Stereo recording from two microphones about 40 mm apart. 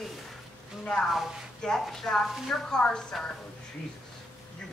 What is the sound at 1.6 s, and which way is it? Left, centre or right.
Speech, centre.